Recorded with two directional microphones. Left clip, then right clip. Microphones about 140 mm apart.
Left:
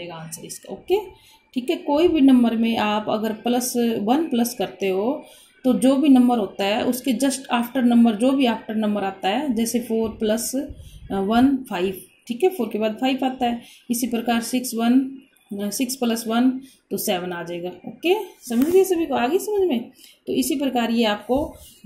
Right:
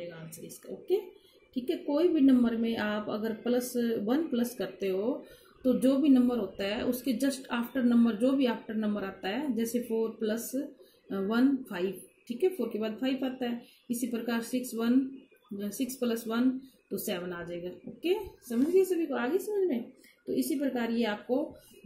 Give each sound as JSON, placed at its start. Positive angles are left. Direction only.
{"t": 1.5, "sound": "speech", "side_deg": 15}